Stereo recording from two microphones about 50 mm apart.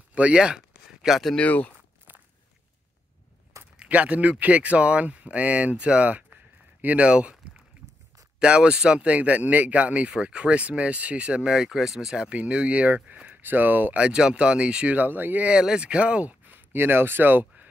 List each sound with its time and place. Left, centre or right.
0.1 s a sound: right
1.4 s speech: left
3.7 s speech: right
7.1 s speech: right
8.4 s speech: centre
11.5 s speech: centre
12.4 s speech: right
13.9 s speech: centre
15.0 s speech: right
15.6 s speech: centre
16.5 s speech: right